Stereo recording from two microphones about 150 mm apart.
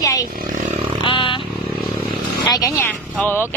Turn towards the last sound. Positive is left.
turn(degrees=15)  # may be behind; listen again after turning